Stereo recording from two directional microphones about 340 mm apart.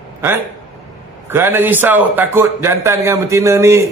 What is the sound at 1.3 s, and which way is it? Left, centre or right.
A man's voice, centre.